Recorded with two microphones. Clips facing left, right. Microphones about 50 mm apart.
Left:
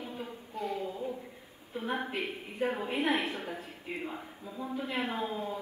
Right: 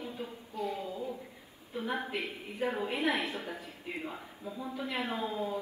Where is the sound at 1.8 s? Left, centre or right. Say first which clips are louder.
Left 1 dB; left.